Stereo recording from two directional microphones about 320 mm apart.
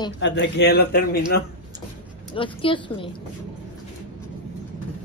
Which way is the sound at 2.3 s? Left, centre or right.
Centre.